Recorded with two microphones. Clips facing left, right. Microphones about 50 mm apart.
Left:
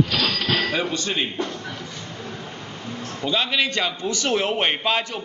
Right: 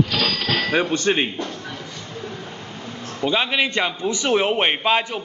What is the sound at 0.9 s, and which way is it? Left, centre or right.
Speech, right.